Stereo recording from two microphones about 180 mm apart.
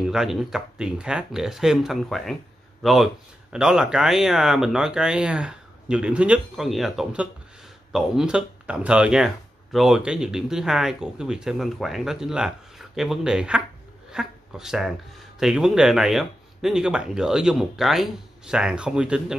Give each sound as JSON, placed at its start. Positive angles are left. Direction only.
{"t": 0.0, "sound": "speech", "side_deg": 0}